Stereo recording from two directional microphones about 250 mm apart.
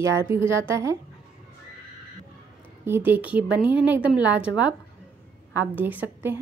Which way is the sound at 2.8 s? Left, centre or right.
Centre.